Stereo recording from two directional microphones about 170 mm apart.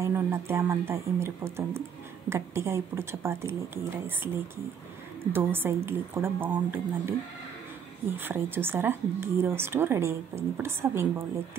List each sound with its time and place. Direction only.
0.0 s speech: 15° right (ahead or behind)
5.3 s speech: 10° right (ahead or behind)